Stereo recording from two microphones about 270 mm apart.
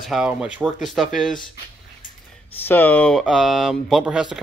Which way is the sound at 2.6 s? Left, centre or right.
Centre.